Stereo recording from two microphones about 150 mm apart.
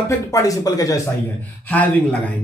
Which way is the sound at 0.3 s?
25° left (ahead or behind).